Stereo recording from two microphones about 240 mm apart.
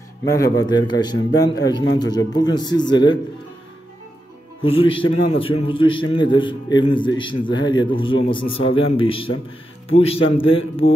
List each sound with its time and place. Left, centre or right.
0.2 s a man's voice: centre
4.6 s a man's voice: left